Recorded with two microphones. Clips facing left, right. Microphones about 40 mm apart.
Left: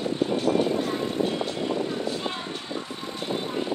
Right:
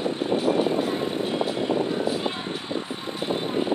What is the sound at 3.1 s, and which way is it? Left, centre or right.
Vehicle, centre.